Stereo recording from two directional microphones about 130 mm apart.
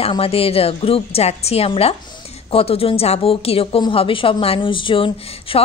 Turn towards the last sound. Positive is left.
turn(degrees=45)  # may be behind; listen again after turning